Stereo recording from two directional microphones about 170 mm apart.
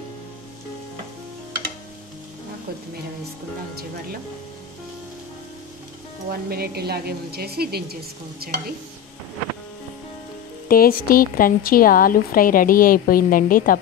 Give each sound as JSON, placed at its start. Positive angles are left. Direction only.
{"t": 6.5, "sound": "a woman's voice", "side_deg": -65}
{"t": 10.7, "sound": "speech", "side_deg": 60}